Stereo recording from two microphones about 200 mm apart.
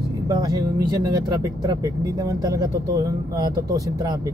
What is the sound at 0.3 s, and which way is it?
Speech, 20° right (ahead or behind).